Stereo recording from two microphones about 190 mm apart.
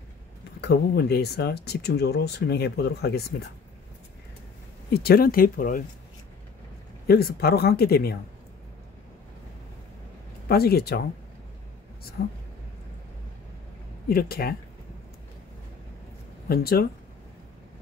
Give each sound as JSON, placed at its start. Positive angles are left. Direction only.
{"t": 0.6, "sound": "speech", "side_deg": 60}
{"t": 4.9, "sound": "speech", "side_deg": 55}
{"t": 7.1, "sound": "speech", "side_deg": 55}
{"t": 10.5, "sound": "speech", "side_deg": 55}
{"t": 12.2, "sound": "speech", "side_deg": 55}
{"t": 14.0, "sound": "speech", "side_deg": 50}
{"t": 16.4, "sound": "speech", "side_deg": 55}